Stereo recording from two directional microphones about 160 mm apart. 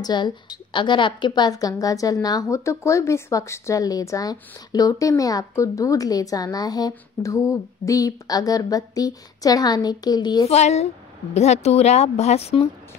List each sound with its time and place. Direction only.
0.0 s a woman's voice: 25° left (ahead or behind)
10.5 s speech: 45° left (ahead or behind)